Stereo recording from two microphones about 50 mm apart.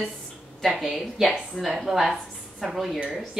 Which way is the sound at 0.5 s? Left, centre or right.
Centre.